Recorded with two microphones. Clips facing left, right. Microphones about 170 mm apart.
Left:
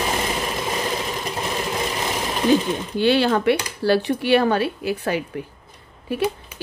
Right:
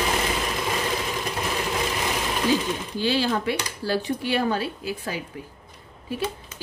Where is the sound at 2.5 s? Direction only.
60° left (ahead or behind).